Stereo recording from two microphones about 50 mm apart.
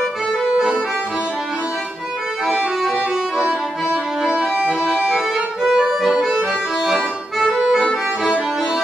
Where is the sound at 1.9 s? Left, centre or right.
Centre.